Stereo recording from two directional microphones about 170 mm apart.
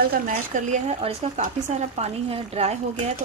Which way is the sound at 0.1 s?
45° right (ahead or behind).